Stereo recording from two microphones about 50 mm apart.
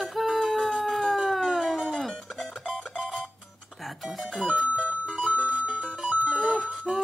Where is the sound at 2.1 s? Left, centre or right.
Centre.